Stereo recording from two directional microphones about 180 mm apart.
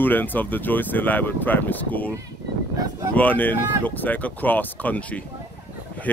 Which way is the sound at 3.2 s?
10° left (ahead or behind).